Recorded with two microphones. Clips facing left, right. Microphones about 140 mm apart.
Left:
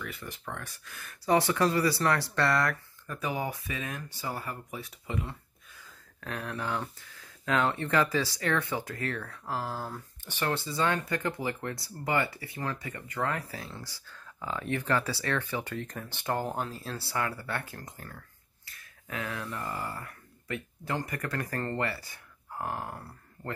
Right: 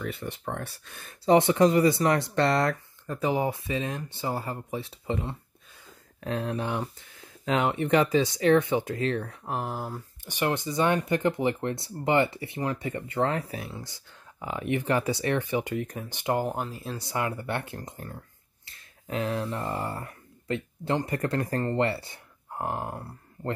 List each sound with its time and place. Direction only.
0.0 s speech: 30° right (ahead or behind)